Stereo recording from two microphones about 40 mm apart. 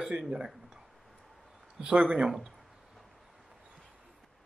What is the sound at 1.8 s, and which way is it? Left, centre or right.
Speech, right.